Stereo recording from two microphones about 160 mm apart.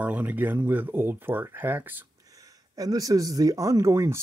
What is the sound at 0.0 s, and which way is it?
A man's voice, 10° right (ahead or behind).